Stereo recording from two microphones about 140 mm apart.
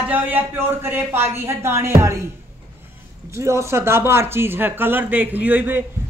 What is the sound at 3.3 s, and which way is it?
A man's voice, 20° right (ahead or behind).